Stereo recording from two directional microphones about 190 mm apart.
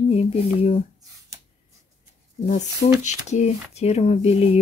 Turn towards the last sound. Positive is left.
turn(degrees=35)  # may be behind; listen again after turning